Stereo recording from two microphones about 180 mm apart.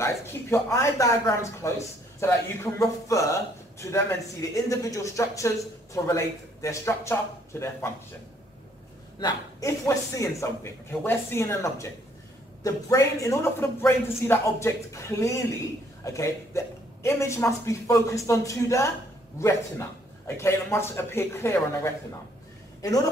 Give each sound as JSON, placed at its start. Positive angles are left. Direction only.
{"t": 0.0, "sound": "speech", "side_deg": 15}
{"t": 9.2, "sound": "speech", "side_deg": 20}
{"t": 20.2, "sound": "speech", "side_deg": 15}